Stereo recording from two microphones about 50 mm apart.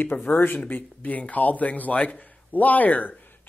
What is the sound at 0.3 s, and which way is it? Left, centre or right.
Speech, left.